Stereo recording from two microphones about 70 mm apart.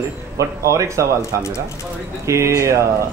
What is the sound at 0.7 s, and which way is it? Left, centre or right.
Speech, right.